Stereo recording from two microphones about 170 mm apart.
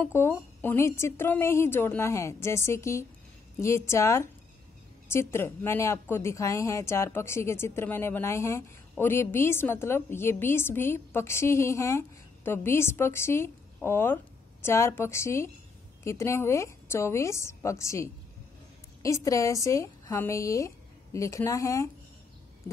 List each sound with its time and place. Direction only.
0.0 s a woman's voice: 15° left (ahead or behind)